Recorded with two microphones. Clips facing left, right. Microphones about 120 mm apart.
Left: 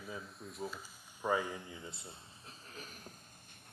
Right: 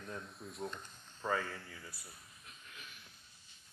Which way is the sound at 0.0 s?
5° left (ahead or behind).